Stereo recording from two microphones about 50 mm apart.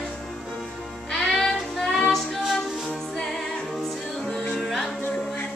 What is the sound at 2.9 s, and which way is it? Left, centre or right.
Music, centre.